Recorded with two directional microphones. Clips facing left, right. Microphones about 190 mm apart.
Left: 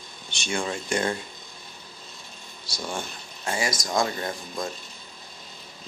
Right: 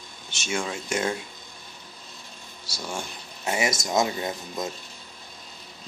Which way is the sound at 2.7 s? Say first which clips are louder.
Left 1 dB; 10° right (ahead or behind).